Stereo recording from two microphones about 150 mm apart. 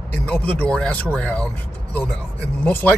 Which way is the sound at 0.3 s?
10° left (ahead or behind).